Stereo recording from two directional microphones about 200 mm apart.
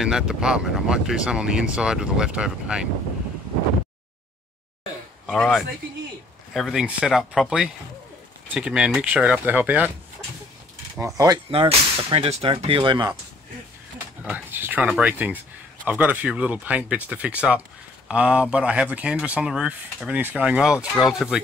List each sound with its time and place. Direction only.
0.0 s speech: 5° right (ahead or behind)
5.2 s speech: 5° left (ahead or behind)
11.1 s speech: 20° right (ahead or behind)
14.2 s speech: 10° right (ahead or behind)